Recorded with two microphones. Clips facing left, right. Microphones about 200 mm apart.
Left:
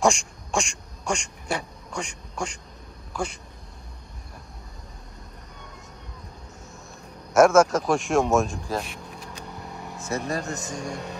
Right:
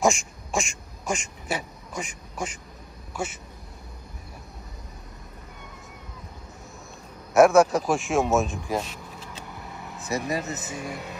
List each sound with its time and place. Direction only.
0.0 s speech: centre (ahead or behind)
7.3 s speech: centre (ahead or behind)
8.7 s speech: 15° right (ahead or behind)
9.8 s vehicle: centre (ahead or behind)
10.3 s speech: 5° right (ahead or behind)